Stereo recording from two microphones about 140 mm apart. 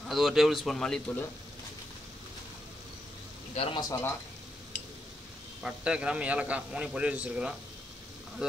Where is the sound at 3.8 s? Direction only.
20° left (ahead or behind).